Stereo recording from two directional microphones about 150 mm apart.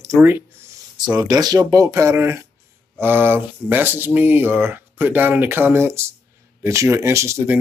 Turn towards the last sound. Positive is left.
turn(degrees=-20)  # may be behind; listen again after turning